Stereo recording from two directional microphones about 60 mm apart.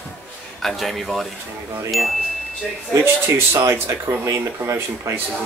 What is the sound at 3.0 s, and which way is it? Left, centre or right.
Speech, right.